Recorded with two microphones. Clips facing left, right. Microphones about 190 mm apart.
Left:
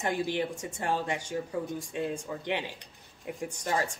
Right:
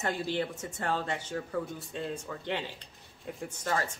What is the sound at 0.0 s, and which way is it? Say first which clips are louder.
Speech: left 2 dB; 15° left (ahead or behind).